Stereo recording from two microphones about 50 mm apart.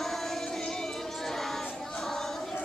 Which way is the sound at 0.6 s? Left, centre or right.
Centre.